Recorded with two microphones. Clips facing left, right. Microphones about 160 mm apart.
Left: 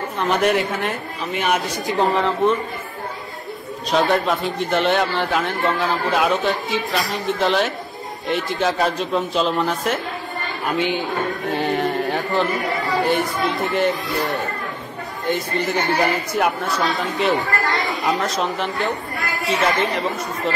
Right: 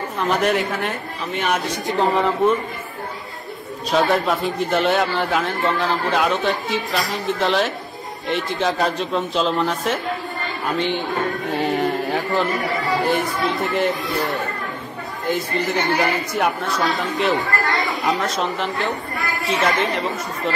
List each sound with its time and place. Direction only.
0.2 s a man's voice: centre (ahead or behind)
3.9 s a man's voice: centre (ahead or behind)
11.5 s a man's voice: centre (ahead or behind)
15.2 s a man's voice: centre (ahead or behind)